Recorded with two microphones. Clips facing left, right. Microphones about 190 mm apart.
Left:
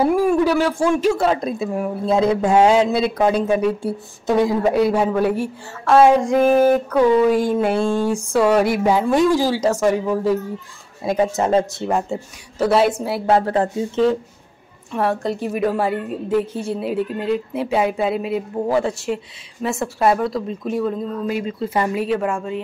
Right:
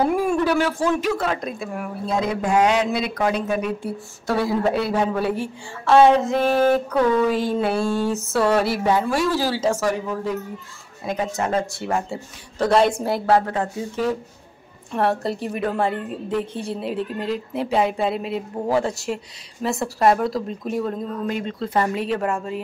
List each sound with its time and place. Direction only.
0.0 s speech: 10° left (ahead or behind)
1.1 s speech: 30° left (ahead or behind); by 9.7 s 15° left (ahead or behind)
11.1 s speech: 30° left (ahead or behind)
12.5 s a woman's voice: 5° left (ahead or behind)
13.5 s speech: 30° left (ahead or behind)
14.9 s a woman's voice: centre (ahead or behind)